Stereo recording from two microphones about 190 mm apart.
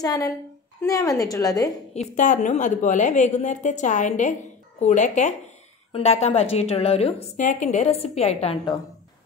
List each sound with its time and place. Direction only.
0.0 s a woman's voice: 20° left (ahead or behind)
2.0 s a woman's voice: 40° left (ahead or behind)